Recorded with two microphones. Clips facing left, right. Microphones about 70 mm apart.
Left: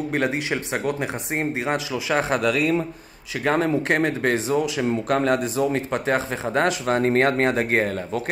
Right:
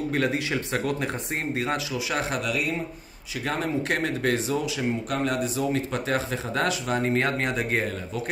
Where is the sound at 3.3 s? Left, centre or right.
Left.